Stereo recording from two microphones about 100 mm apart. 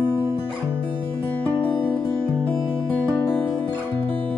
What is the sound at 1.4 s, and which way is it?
Music, 15° left (ahead or behind).